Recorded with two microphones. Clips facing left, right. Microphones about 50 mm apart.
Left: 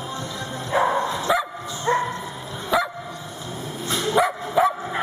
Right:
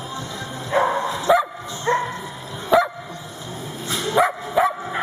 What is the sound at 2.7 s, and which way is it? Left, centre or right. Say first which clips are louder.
Dog: right 5 dB; right.